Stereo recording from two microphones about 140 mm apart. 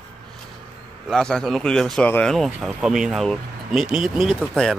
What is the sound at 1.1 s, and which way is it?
Speech, 5° left (ahead or behind).